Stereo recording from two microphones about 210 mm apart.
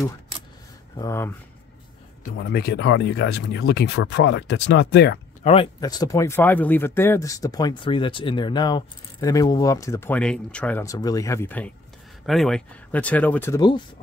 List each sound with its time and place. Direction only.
0.9 s speech: 15° left (ahead or behind)
2.3 s speech: 50° left (ahead or behind)
5.4 s speech: 30° left (ahead or behind)
5.8 s speech: 20° left (ahead or behind)
13.6 s speech: 20° left (ahead or behind)